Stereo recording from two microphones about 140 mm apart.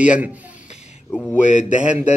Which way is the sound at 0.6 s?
55° left (ahead or behind).